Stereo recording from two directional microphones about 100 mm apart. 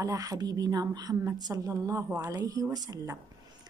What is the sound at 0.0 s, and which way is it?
Speech, 40° right (ahead or behind).